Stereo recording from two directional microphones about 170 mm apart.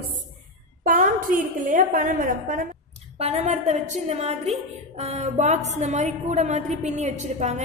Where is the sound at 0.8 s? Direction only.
50° right (ahead or behind).